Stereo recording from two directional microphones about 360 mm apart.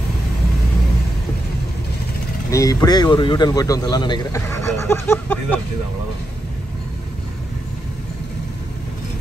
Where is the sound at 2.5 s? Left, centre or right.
Centre.